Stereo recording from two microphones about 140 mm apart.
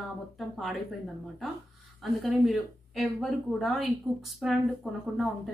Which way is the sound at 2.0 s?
Centre (ahead or behind).